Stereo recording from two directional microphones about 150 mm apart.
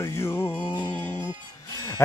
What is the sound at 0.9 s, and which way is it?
Music, 10° left (ahead or behind).